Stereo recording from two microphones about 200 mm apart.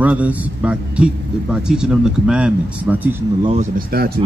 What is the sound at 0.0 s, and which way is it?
A man's voice, 5° right (ahead or behind).